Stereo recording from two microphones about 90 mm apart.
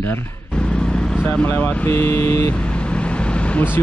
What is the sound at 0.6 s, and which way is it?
Speech, 10° left (ahead or behind).